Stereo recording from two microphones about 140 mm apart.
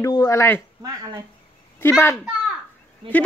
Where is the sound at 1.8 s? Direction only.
15° left (ahead or behind).